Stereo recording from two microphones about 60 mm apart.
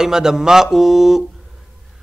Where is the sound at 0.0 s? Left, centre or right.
Centre.